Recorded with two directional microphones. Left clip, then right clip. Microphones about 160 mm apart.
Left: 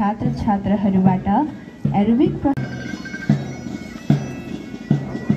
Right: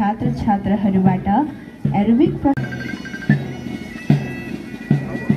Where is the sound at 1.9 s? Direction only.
45° right (ahead or behind).